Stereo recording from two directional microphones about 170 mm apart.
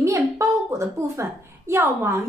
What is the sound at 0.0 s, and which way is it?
A woman's voice, 15° right (ahead or behind).